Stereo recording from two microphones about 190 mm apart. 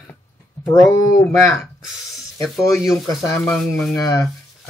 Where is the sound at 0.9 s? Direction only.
15° left (ahead or behind).